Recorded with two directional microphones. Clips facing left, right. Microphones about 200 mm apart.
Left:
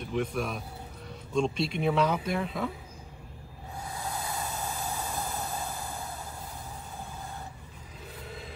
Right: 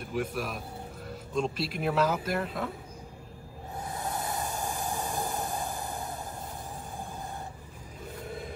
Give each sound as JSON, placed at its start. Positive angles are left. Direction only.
{"t": 0.0, "sound": "a man's voice", "side_deg": -5}
{"t": 3.7, "sound": "a sound", "side_deg": -20}
{"t": 8.3, "sound": "vehicle", "side_deg": -50}